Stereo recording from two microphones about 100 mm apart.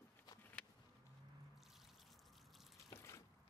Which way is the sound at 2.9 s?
25° left (ahead or behind).